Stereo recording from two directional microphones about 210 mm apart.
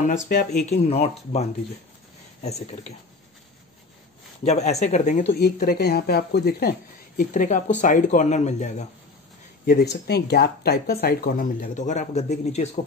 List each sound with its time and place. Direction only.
0.1 s speech: 35° left (ahead or behind)
2.4 s speech: 30° left (ahead or behind)
4.5 s speech: 30° left (ahead or behind)
5.4 s speech: 50° left (ahead or behind)
7.2 s speech: 35° left (ahead or behind)
9.7 s speech: 50° left (ahead or behind); by 12.6 s 30° left (ahead or behind)